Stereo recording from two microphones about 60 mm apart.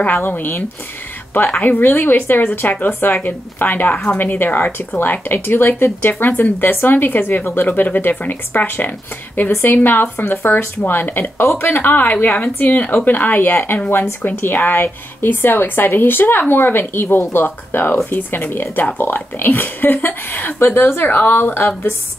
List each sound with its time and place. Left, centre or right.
0.3 s speech: left